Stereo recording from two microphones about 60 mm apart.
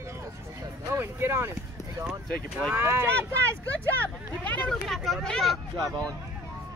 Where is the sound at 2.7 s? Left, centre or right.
Right.